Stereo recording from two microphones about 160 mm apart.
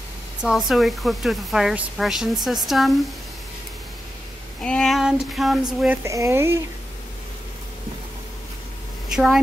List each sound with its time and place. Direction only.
0.4 s speech: centre (ahead or behind)
4.6 s speech: 5° left (ahead or behind)
6.0 s speech: 20° right (ahead or behind)
9.1 s speech: centre (ahead or behind)